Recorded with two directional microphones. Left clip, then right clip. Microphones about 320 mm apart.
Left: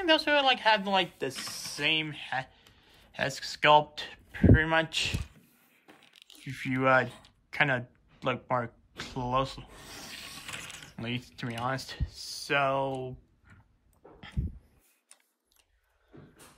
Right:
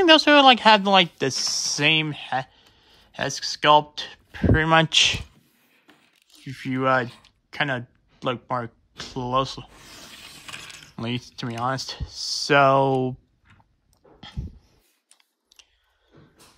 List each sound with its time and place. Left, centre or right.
0.0 s speech: centre
1.3 s speech: centre
1.6 s speech: centre
6.4 s speech: centre
11.0 s speech: centre
15.5 s chewing: right